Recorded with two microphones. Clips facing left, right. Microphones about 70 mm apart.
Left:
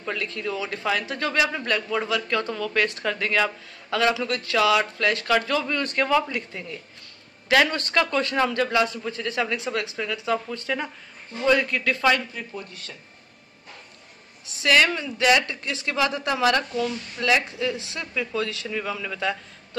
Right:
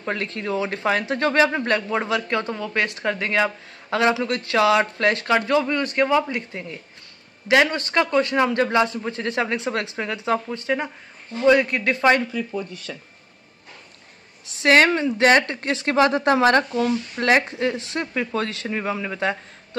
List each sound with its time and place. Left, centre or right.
0.0 s a man's voice: right
14.6 s a man's voice: right